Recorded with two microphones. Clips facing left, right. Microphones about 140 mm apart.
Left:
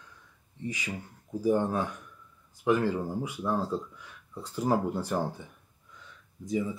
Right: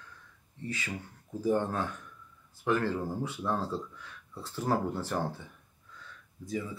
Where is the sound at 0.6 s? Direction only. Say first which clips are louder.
Left 2 dB; 15° left (ahead or behind).